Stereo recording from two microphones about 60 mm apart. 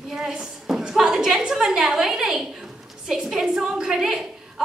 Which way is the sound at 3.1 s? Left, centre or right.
Centre.